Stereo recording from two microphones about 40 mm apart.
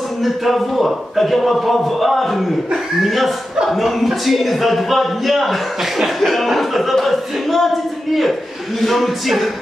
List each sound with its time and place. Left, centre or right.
0.2 s a man's voice: centre